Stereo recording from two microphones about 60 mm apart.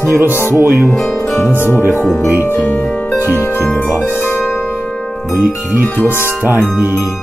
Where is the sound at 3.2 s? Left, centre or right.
Right.